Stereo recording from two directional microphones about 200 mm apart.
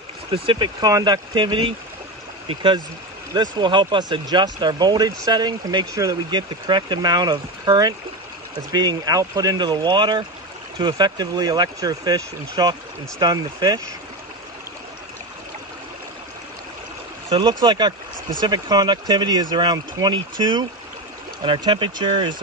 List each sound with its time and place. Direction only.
0.3 s speech: 25° right (ahead or behind)
17.3 s speech: 20° right (ahead or behind)